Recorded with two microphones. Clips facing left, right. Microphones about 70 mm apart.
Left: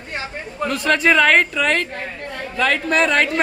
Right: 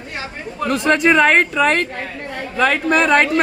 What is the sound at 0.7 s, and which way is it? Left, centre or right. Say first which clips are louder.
A woman's voice: right 2 dB; right.